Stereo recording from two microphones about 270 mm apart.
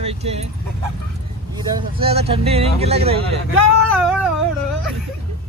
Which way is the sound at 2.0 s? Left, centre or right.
Right.